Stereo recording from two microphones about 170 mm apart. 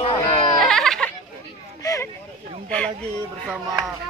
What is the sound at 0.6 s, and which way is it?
Music, centre (ahead or behind).